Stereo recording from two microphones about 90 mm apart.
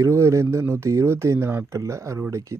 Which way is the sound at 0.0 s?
30° right (ahead or behind).